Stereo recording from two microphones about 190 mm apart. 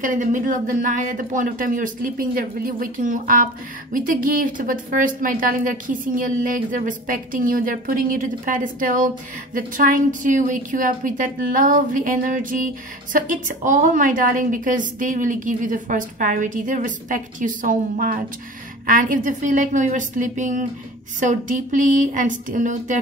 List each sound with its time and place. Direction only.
0.0 s a woman's voice: 45° right (ahead or behind)